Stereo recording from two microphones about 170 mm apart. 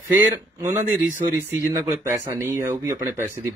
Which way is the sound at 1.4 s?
15° right (ahead or behind).